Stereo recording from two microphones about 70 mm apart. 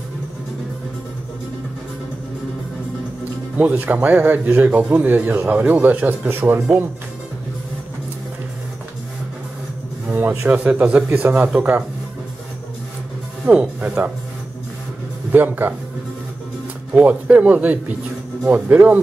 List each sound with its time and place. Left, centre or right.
3.5 s speech: right
10.0 s a sound: right
10.5 s speech: centre
13.5 s speech: centre
15.3 s speech: right
16.9 s speech: centre